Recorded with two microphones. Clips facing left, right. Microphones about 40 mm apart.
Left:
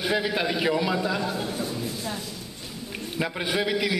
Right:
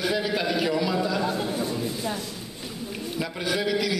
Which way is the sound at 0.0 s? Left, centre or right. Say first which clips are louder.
Even; centre.